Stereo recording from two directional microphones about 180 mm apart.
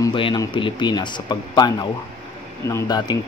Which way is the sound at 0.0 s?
25° left (ahead or behind).